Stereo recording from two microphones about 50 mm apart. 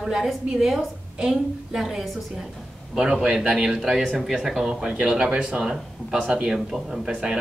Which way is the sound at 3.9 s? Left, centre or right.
Centre.